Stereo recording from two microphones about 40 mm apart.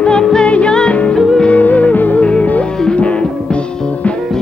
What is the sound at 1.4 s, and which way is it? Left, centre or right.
Music, left.